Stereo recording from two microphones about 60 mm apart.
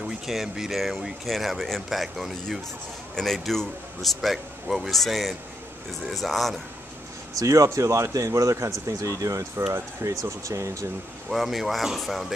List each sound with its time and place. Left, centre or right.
0.3 s speech: centre
7.3 s speech: right
10.0 s speech: right
10.4 s speech: right
11.2 s speech: centre